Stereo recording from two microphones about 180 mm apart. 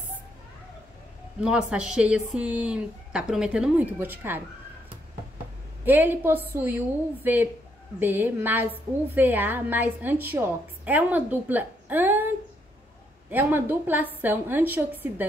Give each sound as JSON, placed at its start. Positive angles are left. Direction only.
{"t": 1.4, "sound": "speech", "side_deg": -5}
{"t": 5.9, "sound": "a woman's voice", "side_deg": -10}
{"t": 13.3, "sound": "a woman's voice", "side_deg": -10}